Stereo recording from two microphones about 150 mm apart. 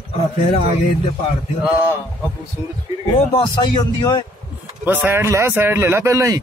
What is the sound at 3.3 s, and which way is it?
Speech, 30° left (ahead or behind).